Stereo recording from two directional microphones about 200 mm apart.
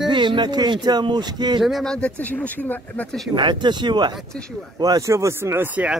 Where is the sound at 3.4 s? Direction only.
20° right (ahead or behind); by 6.0 s 5° right (ahead or behind).